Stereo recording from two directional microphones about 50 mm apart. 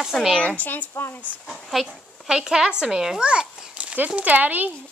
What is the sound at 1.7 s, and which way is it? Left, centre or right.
Speech, centre.